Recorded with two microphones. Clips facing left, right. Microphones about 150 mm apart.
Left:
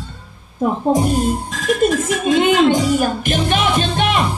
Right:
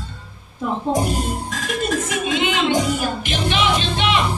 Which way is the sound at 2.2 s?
45° left (ahead or behind).